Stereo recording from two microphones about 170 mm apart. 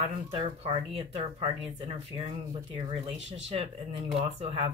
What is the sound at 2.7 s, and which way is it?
Speech, 35° right (ahead or behind).